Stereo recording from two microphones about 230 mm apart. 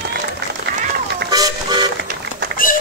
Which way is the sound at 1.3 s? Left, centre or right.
Centre.